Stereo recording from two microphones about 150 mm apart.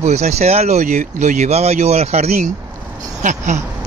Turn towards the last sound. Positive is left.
turn(degrees=-55)  # may be behind; listen again after turning